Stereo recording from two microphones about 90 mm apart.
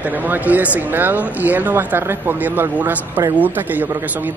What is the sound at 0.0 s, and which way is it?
Speech, 20° right (ahead or behind).